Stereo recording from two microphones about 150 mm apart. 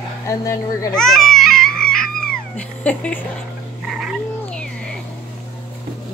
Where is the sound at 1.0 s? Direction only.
5° left (ahead or behind).